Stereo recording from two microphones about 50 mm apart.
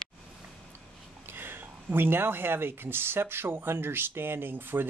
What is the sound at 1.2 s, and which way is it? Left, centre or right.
Speech, right.